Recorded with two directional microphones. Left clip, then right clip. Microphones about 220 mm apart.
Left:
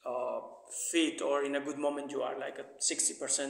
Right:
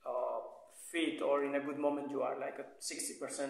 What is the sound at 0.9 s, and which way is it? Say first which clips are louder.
A man's voice: left 3 dB; 45° left (ahead or behind).